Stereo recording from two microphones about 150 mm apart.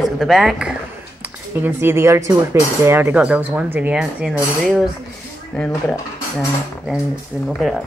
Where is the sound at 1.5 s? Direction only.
15° right (ahead or behind).